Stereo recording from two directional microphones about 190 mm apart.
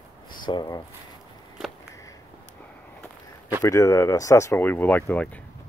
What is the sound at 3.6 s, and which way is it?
Speech, 15° left (ahead or behind).